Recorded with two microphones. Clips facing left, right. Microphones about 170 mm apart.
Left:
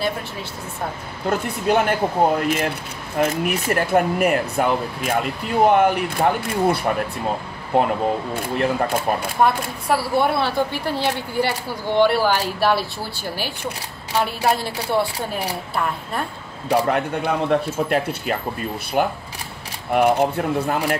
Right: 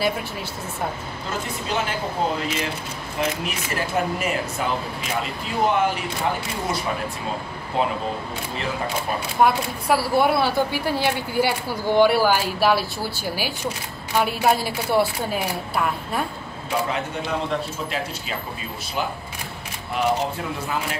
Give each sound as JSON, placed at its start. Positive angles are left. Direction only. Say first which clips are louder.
{"t": 1.7, "sound": "speech", "louder": "left 8 dB", "side_deg": 55}
{"t": 9.8, "sound": "a woman's voice", "louder": "even", "side_deg": 0}
{"t": 16.9, "sound": "speech", "louder": "left 5 dB", "side_deg": 55}